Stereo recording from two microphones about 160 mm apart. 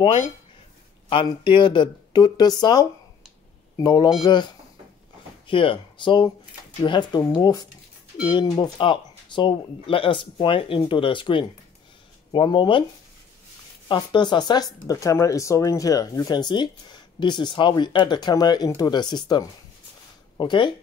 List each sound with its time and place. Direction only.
1.0 s speech: 30° left (ahead or behind)
5.5 s speech: 35° left (ahead or behind)
13.8 s speech: 30° left (ahead or behind)